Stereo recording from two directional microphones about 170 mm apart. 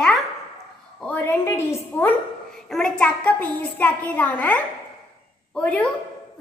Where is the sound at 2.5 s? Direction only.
5° left (ahead or behind).